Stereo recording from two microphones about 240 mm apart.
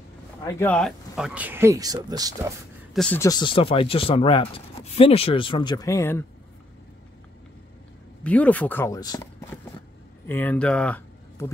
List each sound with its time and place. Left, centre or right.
0.6 s speech: centre
2.9 s speech: centre
8.2 s speech: centre